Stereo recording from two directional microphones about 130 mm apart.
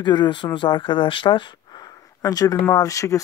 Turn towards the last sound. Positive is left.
turn(degrees=25)  # may be behind; listen again after turning